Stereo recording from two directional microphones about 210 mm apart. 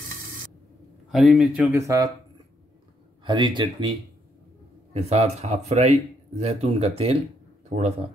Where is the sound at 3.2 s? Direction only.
20° right (ahead or behind).